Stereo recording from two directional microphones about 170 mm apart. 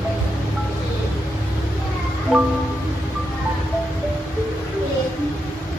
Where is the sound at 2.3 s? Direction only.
5° left (ahead or behind).